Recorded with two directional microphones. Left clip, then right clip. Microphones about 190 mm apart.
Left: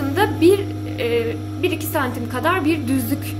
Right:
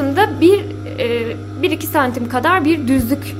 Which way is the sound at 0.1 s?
30° right (ahead or behind).